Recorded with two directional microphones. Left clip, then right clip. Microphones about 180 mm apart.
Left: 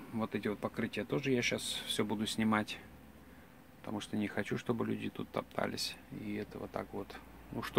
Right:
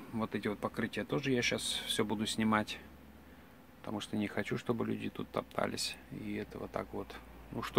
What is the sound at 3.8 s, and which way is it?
Speech, 15° right (ahead or behind).